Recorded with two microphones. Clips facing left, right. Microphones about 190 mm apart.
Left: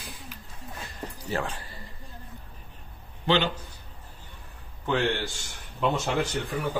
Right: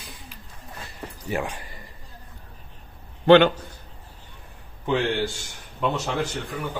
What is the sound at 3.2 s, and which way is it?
Speech, 55° right (ahead or behind).